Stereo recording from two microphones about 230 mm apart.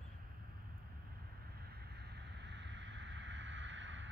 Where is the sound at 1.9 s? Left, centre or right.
Right.